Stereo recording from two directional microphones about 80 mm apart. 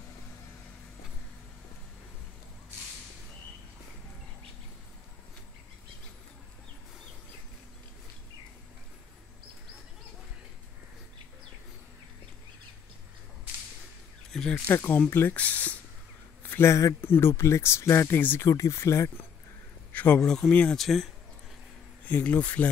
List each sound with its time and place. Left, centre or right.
14.3 s speech: centre
14.7 s speech: left
15.3 s speech: centre
16.4 s speech: left
18.5 s speech: left
19.9 s a sound: centre
20.2 s speech: centre
22.0 s speech: centre